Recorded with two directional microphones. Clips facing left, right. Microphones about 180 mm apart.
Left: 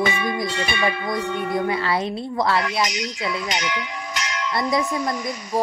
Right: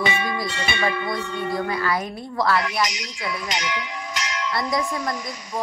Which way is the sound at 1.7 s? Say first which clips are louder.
Left 2 dB; 25° left (ahead or behind).